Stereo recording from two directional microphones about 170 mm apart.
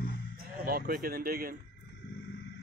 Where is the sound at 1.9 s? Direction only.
90° left.